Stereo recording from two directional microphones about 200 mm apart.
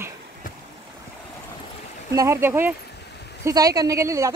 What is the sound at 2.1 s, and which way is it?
Speech, 15° right (ahead or behind).